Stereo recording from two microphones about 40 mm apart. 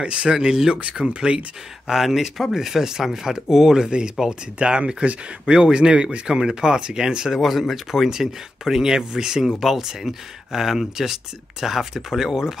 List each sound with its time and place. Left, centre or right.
0.0 s speech: right
1.9 s speech: centre
7.3 s speech: centre